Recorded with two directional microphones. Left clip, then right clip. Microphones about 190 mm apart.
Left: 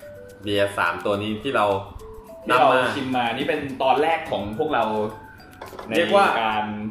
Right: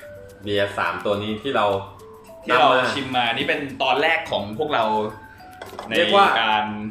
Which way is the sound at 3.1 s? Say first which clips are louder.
Right 2 dB; 15° right (ahead or behind).